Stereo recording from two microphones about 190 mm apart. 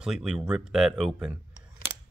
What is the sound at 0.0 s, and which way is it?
Speech, 5° right (ahead or behind).